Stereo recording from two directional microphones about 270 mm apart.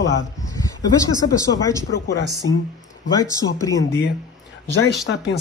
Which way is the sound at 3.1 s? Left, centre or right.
Centre.